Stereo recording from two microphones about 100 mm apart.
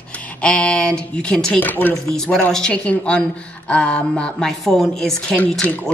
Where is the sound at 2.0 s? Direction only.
5° left (ahead or behind).